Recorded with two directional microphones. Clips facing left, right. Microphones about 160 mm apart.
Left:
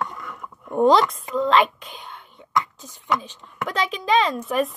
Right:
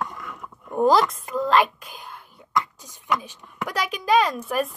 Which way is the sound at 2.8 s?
15° right (ahead or behind).